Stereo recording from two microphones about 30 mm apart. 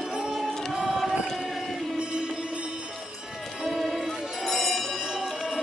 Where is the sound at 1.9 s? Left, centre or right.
Right.